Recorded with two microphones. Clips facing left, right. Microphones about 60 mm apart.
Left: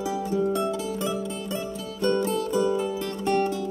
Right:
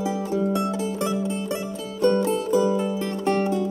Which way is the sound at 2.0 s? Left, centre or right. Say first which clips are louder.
Right 4 dB; right.